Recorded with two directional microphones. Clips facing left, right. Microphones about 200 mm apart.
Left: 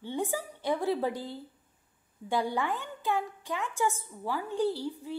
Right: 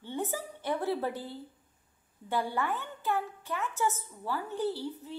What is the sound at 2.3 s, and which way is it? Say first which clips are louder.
A woman's voice: left 2 dB; 15° left (ahead or behind).